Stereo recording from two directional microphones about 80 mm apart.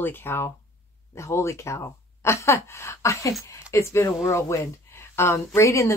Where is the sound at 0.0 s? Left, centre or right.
Left.